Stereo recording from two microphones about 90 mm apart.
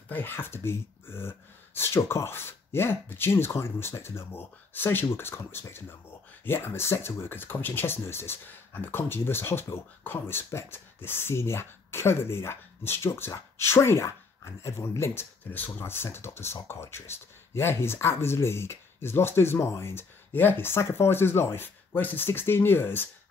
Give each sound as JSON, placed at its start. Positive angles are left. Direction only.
{"t": 0.1, "sound": "speech", "side_deg": 25}